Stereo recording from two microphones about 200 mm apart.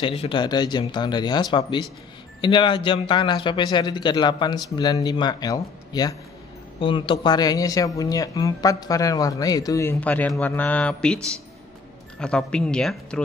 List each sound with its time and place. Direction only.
0.0 s speech: 25° left (ahead or behind); by 13.2 s 5° left (ahead or behind)